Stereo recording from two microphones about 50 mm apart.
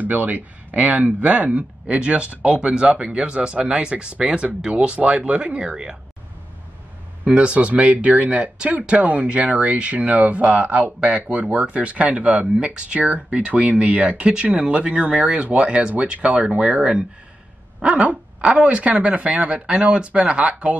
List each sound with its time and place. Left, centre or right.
0.0 s speech: right
7.2 s speech: right